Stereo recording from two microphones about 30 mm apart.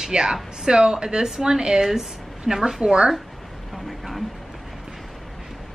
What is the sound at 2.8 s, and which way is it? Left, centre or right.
Speech, right.